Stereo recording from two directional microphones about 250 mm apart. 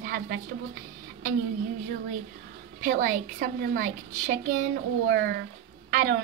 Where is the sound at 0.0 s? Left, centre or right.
Right.